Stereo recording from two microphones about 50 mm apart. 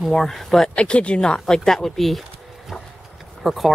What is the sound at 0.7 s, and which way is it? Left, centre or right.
Speech, left.